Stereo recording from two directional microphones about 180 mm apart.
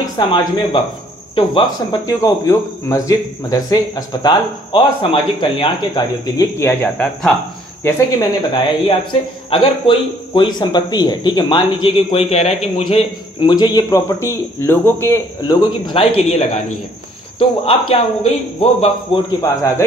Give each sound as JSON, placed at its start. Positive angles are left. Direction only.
{"t": 0.0, "sound": "speech", "side_deg": 25}
{"t": 7.8, "sound": "speech", "side_deg": 20}
{"t": 19.1, "sound": "speech", "side_deg": 30}